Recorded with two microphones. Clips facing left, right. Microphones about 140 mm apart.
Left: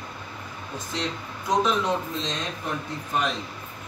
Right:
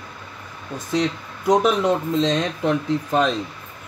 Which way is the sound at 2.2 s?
70° right (ahead or behind).